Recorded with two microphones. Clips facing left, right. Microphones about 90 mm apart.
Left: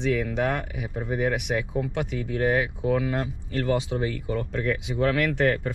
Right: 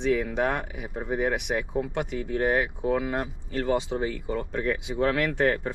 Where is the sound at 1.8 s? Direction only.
25° right (ahead or behind).